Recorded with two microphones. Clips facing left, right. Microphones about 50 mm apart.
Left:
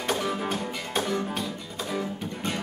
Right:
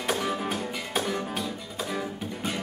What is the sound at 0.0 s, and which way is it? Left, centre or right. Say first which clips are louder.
Music: even; centre.